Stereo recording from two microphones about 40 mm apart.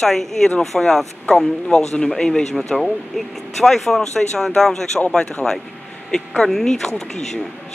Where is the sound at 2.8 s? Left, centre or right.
Centre.